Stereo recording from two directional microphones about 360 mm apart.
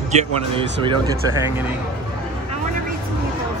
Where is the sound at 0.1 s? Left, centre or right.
Centre.